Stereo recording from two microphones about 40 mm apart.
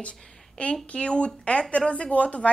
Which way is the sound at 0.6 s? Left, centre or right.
Left.